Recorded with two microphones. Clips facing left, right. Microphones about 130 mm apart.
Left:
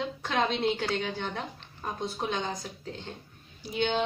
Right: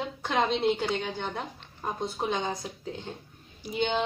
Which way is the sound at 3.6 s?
10° right (ahead or behind).